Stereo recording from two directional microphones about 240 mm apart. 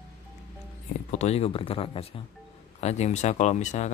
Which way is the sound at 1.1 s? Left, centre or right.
Left.